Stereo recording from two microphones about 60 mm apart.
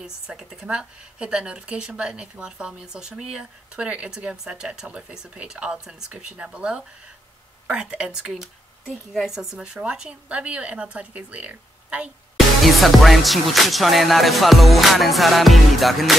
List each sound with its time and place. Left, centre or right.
0.0 s speech: centre
12.6 s music: centre